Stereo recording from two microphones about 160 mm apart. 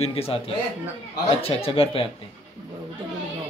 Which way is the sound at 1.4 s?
35° left (ahead or behind).